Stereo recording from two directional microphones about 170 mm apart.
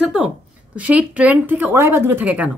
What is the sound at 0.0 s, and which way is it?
A woman's voice, 5° right (ahead or behind).